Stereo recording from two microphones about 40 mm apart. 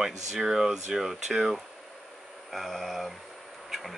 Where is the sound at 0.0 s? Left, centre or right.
Centre.